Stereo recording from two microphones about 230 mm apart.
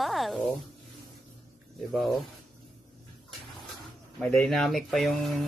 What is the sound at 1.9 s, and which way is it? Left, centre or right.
Speech, centre.